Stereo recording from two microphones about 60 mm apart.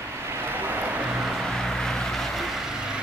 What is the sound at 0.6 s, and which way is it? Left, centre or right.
Vehicle, right.